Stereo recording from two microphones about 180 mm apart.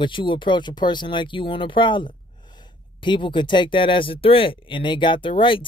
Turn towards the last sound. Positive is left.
turn(degrees=30)  # may be behind; listen again after turning